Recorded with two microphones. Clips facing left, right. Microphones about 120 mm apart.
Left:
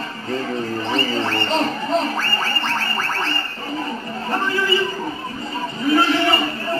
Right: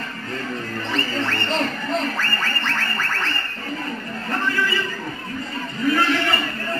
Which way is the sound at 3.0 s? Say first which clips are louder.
Left 2 dB; 35° left (ahead or behind).